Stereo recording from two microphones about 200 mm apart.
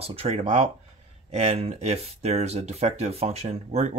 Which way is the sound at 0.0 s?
30° right (ahead or behind).